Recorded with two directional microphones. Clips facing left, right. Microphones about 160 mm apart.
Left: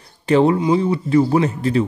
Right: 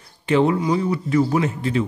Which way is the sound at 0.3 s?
35° left (ahead or behind).